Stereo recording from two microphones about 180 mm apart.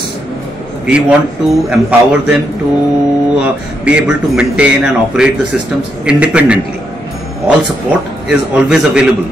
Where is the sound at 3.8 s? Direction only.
5° right (ahead or behind).